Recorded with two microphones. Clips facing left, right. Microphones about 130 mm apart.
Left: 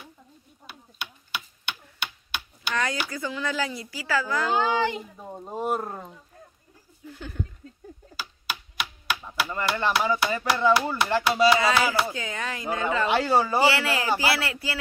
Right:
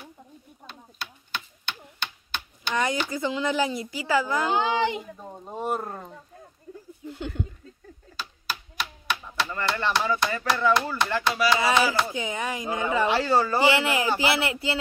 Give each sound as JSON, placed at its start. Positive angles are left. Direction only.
{"t": 0.7, "sound": "computer keyboard", "side_deg": 10}
{"t": 2.7, "sound": "speech", "side_deg": -20}
{"t": 5.2, "sound": "speech", "side_deg": 5}
{"t": 7.1, "sound": "speech", "side_deg": -25}
{"t": 8.2, "sound": "a sound", "side_deg": 10}
{"t": 9.5, "sound": "speech", "side_deg": 15}
{"t": 12.1, "sound": "speech", "side_deg": -20}
{"t": 13.1, "sound": "speech", "side_deg": 15}
{"t": 13.7, "sound": "speech", "side_deg": -20}